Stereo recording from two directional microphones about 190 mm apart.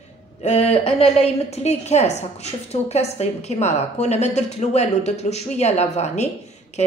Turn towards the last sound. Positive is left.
turn(degrees=35)  # may be behind; listen again after turning